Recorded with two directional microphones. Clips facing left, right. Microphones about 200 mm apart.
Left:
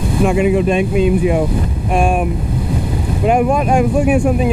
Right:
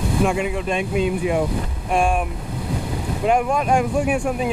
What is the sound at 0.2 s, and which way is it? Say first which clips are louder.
Speech: left 9 dB; 15° left (ahead or behind).